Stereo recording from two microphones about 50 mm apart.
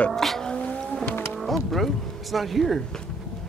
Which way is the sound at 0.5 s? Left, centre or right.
Left.